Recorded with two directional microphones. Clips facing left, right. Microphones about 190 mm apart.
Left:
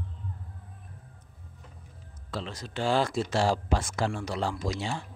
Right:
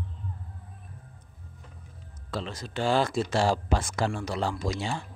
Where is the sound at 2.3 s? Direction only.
45° right (ahead or behind).